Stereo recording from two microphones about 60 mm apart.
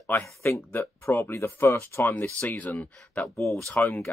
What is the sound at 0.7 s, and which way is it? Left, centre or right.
Speech, left.